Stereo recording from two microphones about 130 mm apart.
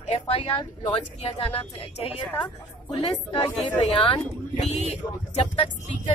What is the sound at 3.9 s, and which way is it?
Speech, 45° left (ahead or behind).